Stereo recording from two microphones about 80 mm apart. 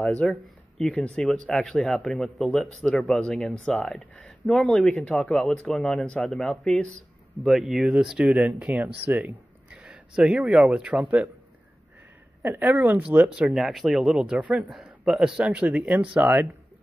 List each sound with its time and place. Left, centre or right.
0.0 s speech: centre
0.3 s speech: centre
6.0 s speech: centre
7.4 s speech: centre
8.4 s speech: centre
12.4 s a woman's voice: right
13.0 s speech: centre
14.7 s speech: centre